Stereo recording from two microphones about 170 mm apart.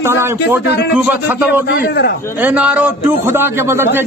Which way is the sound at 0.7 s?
75° left (ahead or behind).